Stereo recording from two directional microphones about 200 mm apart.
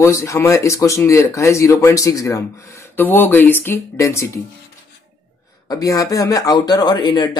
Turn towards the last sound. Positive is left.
turn(degrees=20)  # may be behind; listen again after turning